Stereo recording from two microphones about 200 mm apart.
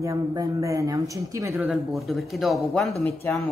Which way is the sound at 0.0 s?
15° right (ahead or behind).